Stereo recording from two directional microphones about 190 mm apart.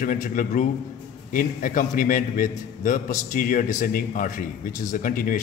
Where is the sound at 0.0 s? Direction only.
45° left (ahead or behind).